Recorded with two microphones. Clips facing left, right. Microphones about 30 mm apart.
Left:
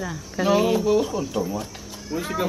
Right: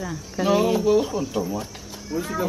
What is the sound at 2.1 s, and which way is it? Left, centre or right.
Speech, left.